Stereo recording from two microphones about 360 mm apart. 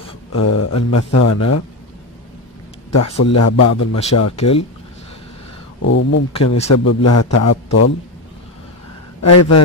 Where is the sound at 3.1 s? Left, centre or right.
Left.